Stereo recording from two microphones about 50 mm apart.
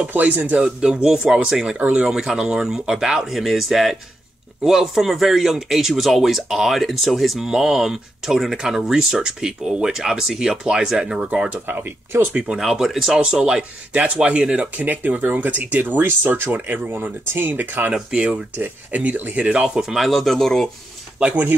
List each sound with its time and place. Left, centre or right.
0.1 s speech: right
0.6 s speech: centre
12.1 s speech: right
12.5 s speech: centre
13.2 s speech: centre
14.8 s speech: right
16.0 s speech: right
18.1 s speech: right
18.6 s speech: right
19.5 s speech: centre
20.0 s speech: centre
21.2 s speech: right